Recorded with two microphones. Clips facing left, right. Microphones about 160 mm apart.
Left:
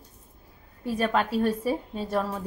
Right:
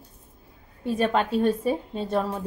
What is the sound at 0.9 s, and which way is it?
Speech, 25° right (ahead or behind).